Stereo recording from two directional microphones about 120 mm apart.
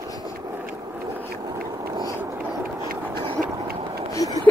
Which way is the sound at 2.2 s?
15° right (ahead or behind).